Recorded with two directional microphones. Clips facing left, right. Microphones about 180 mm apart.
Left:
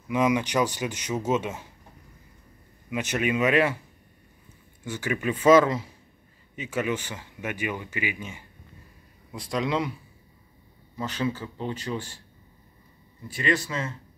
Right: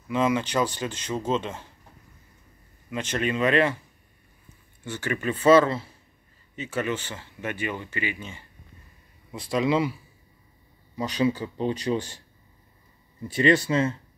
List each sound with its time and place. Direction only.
0.1 s speech: 15° left (ahead or behind)
2.9 s speech: 10° left (ahead or behind)
4.8 s speech: 10° left (ahead or behind)
9.3 s speech: centre (ahead or behind)
11.0 s speech: 15° right (ahead or behind)
13.3 s speech: 30° right (ahead or behind)